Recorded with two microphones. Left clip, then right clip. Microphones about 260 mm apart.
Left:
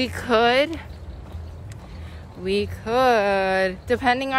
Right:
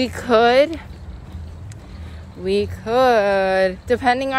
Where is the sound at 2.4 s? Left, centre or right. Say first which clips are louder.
Right 4 dB; centre.